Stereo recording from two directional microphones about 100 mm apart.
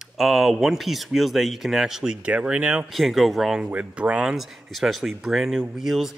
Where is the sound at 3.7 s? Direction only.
15° right (ahead or behind).